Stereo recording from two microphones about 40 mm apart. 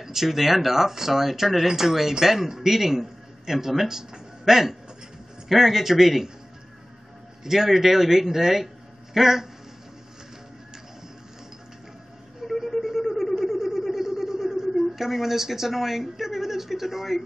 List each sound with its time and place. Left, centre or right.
0.0 s speech: centre
7.4 s speech: centre
12.4 s a sound: centre